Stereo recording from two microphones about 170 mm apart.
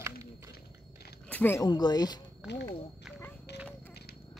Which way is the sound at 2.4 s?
5° right (ahead or behind).